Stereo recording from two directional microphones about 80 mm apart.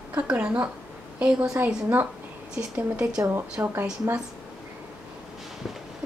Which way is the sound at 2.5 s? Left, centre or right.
Centre.